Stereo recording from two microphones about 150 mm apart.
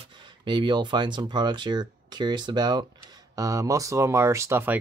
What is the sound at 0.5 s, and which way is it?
Speech, 30° right (ahead or behind).